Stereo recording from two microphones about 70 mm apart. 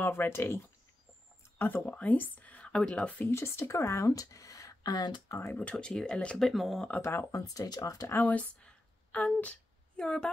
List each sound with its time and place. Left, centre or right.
0.0 s speech: left
1.6 s speech: left
3.3 s speech: left
5.6 s speech: centre
6.5 s speech: centre
7.0 s speech: left
7.5 s speech: left
8.2 s a sound: left
9.9 s speech: centre